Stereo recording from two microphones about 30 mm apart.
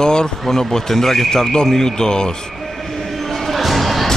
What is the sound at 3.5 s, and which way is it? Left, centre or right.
Music, centre.